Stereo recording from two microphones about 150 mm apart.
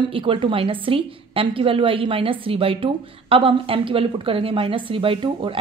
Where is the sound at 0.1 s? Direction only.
35° right (ahead or behind).